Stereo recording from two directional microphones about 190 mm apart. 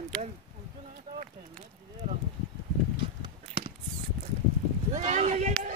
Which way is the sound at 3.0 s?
30° right (ahead or behind).